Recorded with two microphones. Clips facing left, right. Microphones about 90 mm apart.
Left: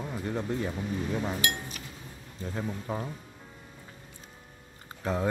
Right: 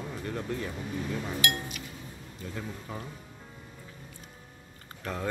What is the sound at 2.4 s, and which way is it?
Speech, 30° left (ahead or behind).